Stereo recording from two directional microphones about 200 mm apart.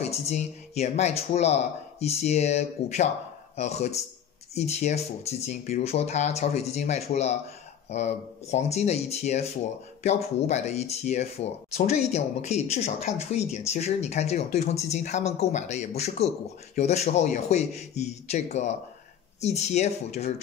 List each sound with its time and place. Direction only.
0.1 s speech: 35° left (ahead or behind)